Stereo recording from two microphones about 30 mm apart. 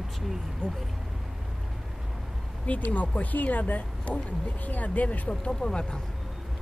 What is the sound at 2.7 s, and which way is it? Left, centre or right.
Speech, left.